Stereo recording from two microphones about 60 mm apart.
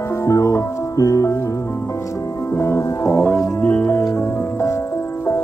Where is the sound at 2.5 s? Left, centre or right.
Left.